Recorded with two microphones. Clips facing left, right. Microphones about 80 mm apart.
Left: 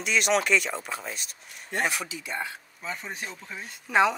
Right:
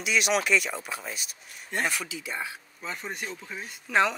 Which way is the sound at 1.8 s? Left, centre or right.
Centre.